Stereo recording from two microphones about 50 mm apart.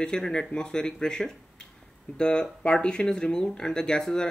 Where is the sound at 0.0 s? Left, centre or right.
Centre.